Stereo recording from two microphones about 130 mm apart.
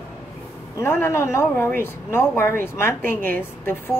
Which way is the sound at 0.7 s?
20° left (ahead or behind).